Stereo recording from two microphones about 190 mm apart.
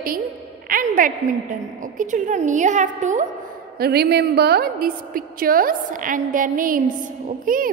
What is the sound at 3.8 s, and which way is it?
A woman's voice, 55° right (ahead or behind).